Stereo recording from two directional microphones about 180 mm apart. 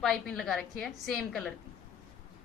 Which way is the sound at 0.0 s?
Centre (ahead or behind).